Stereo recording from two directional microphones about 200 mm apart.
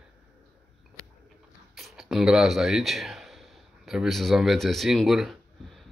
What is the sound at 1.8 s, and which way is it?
Speech, centre (ahead or behind).